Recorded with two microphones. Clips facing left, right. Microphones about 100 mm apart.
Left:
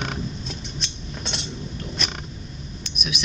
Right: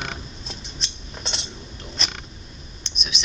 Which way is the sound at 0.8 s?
Centre (ahead or behind).